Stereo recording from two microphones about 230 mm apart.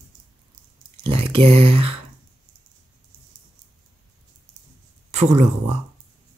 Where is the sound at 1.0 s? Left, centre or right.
Right.